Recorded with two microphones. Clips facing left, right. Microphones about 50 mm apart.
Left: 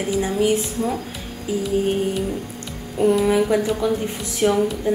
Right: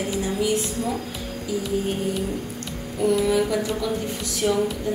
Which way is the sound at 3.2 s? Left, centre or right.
Left.